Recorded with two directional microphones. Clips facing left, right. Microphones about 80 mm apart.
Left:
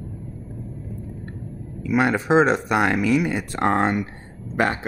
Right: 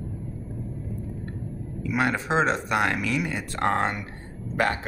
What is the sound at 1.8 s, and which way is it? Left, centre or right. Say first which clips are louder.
Speech: left 5 dB; centre.